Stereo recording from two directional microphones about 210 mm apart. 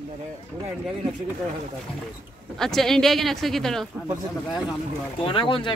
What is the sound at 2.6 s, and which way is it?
A woman's voice, centre (ahead or behind).